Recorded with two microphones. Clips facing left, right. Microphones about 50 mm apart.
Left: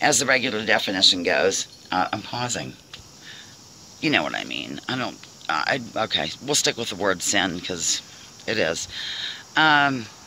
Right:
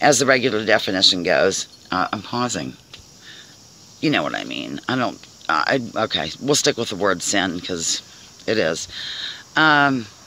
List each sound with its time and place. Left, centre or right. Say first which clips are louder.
0.0 s speech: right 5 dB; centre
1.5 s speech: right 2 dB; left
4.0 s speech: right 2 dB; left
4.3 s speech: right 3 dB; centre
4.6 s speech: right 6 dB; centre
5.5 s speech: right 5 dB; centre